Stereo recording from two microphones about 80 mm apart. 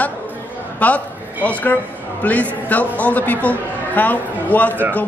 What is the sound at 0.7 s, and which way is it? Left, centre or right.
A woman's voice, centre.